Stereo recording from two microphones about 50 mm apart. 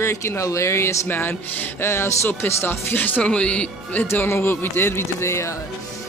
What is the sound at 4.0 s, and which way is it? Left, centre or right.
Speech, left.